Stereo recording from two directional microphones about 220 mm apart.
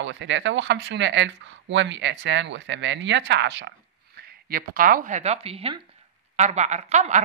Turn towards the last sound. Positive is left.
turn(degrees=-30)  # may be behind; listen again after turning